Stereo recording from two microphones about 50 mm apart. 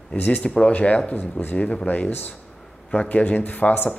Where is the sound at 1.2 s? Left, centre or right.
Left.